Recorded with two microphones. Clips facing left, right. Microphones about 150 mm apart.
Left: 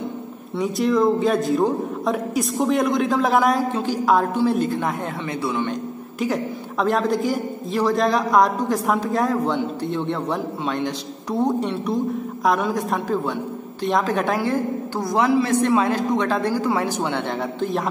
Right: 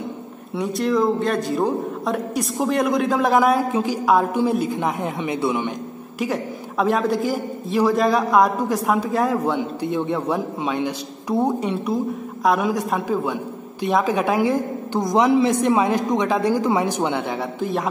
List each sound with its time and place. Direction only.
0.6 s a man's voice: centre (ahead or behind); by 5.8 s 15° right (ahead or behind)
6.1 s a man's voice: centre (ahead or behind)
17.4 s a man's voice: 5° right (ahead or behind)